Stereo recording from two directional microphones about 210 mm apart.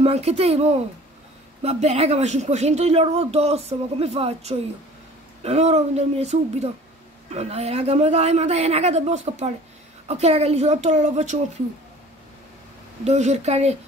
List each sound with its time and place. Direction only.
0.0 s a woman's voice: 30° right (ahead or behind)
13.0 s speech: 30° right (ahead or behind)